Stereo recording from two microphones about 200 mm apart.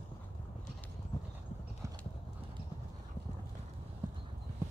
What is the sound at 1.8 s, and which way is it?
Clip-clop, 15° right (ahead or behind).